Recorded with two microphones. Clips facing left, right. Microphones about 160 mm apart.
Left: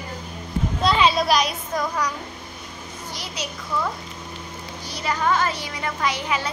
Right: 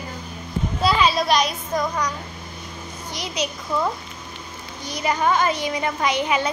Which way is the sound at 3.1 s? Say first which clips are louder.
Right 6 dB; 15° right (ahead or behind).